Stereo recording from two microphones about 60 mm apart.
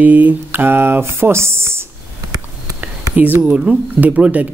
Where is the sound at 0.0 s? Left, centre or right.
Right.